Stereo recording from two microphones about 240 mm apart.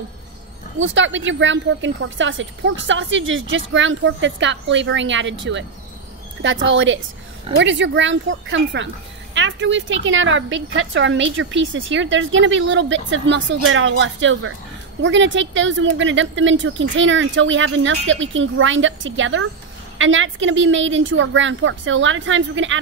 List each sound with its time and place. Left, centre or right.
0.7 s speech: right